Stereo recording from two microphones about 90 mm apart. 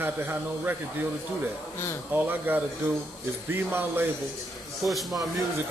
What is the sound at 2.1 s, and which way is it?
Speech, 20° right (ahead or behind).